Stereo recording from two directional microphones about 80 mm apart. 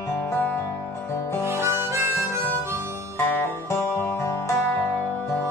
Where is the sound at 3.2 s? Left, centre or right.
Left.